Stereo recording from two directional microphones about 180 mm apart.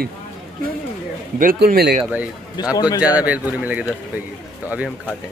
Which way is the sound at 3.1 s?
10° right (ahead or behind).